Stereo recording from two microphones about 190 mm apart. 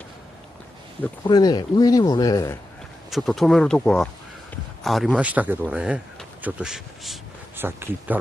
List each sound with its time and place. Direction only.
1.2 s speech: 20° left (ahead or behind)
3.1 s speech: centre (ahead or behind)